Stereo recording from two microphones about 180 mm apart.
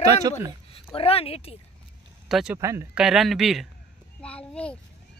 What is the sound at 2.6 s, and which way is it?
Speech, 15° right (ahead or behind).